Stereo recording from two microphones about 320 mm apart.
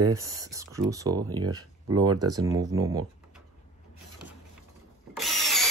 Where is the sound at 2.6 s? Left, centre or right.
Right.